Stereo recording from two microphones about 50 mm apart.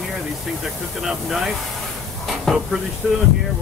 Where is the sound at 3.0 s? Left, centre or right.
Centre.